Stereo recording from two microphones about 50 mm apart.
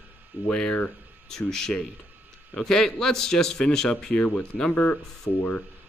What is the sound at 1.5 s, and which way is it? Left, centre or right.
A man's voice, centre.